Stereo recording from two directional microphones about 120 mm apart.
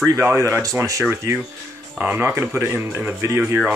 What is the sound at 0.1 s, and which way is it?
Speech, 25° right (ahead or behind).